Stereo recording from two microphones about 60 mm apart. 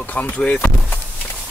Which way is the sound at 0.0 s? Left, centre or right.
Left.